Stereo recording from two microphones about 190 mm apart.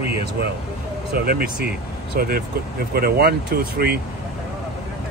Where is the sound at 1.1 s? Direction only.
55° right (ahead or behind).